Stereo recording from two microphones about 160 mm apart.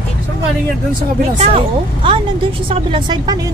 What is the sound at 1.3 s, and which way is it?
A woman's voice, 35° right (ahead or behind).